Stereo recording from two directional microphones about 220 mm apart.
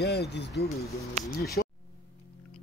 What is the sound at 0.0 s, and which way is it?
Speech, 45° left (ahead or behind).